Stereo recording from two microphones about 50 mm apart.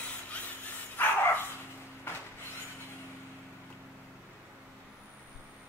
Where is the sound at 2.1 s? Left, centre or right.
Left.